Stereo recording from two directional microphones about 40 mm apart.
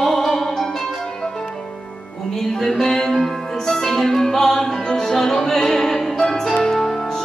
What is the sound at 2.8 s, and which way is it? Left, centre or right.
Music, centre.